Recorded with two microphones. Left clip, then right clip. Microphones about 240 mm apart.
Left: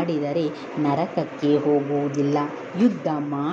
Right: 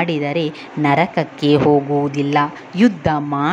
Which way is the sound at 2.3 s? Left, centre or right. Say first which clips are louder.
Right 7 dB; right.